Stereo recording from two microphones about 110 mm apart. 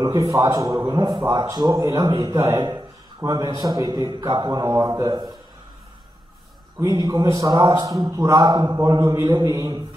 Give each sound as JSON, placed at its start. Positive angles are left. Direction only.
{"t": 0.0, "sound": "a man's voice", "side_deg": -35}
{"t": 6.8, "sound": "a man's voice", "side_deg": -35}